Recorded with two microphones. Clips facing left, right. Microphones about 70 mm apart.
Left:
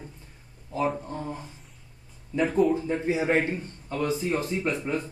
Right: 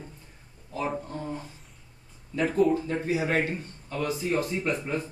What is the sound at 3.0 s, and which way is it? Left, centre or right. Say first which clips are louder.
Speech: left 4 dB; left.